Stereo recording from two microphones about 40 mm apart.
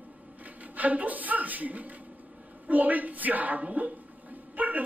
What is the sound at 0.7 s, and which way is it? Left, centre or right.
A man's voice, right.